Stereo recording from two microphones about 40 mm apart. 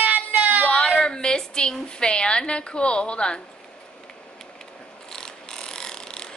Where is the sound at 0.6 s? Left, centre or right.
Left.